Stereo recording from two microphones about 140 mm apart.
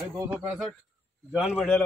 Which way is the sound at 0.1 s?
20° right (ahead or behind).